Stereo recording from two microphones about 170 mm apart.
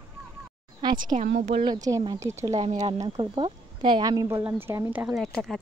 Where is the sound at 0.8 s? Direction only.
25° right (ahead or behind).